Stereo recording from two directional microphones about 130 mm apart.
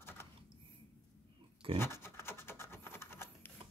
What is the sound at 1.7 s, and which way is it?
Scratch, 20° left (ahead or behind).